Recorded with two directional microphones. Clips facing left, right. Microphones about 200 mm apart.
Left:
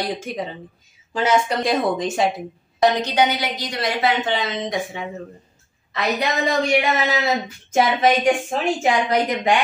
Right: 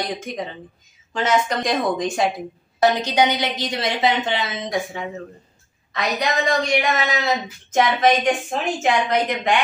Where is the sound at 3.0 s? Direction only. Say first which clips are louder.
Even; 15° right (ahead or behind).